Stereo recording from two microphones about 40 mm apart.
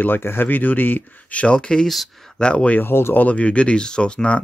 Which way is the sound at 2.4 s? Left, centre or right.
Left.